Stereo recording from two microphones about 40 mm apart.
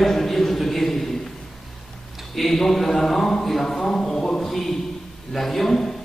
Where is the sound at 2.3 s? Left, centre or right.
Centre.